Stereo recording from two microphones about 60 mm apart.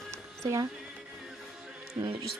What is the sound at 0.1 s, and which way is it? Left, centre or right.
Music, right.